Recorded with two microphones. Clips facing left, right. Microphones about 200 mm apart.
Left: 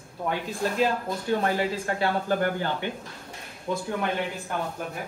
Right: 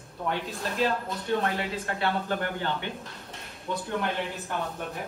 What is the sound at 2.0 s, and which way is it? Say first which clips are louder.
Speech: left 4 dB; 45° left (ahead or behind).